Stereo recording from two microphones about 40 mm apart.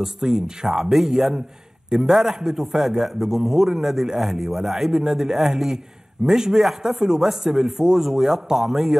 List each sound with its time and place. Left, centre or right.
0.0 s a man's voice: centre